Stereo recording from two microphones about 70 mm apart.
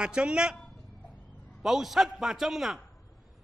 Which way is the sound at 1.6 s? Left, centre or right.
Centre.